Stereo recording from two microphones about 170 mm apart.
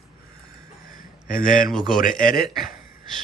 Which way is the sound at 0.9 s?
55° left (ahead or behind).